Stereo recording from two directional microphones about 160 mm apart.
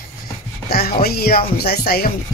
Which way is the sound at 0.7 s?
75° left (ahead or behind).